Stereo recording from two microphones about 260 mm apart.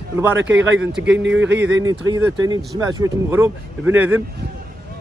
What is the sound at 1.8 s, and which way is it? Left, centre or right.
A man's voice, centre.